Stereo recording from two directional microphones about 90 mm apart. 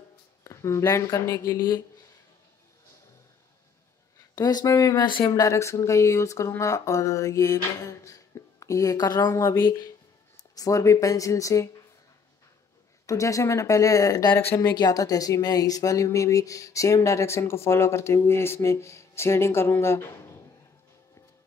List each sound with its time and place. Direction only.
0.4 s speech: 35° left (ahead or behind)
4.4 s speech: 45° left (ahead or behind)
4.9 s speech: 55° left (ahead or behind)
5.3 s speech: 35° left (ahead or behind)
9.2 s speech: 30° left (ahead or behind)
10.5 s speech: 40° left (ahead or behind)
13.0 s speech: 35° left (ahead or behind)
14.3 s speech: 25° left (ahead or behind)
14.8 s speech: 45° left (ahead or behind)